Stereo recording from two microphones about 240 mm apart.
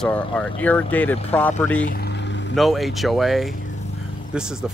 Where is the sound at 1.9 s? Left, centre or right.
Left.